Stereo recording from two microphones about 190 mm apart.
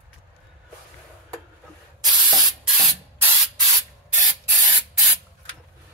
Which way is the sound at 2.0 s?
20° right (ahead or behind).